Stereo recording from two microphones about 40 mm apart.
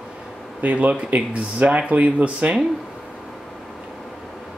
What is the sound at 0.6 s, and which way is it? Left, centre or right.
Speech, right.